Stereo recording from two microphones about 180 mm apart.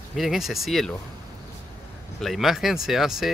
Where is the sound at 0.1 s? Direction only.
Centre (ahead or behind).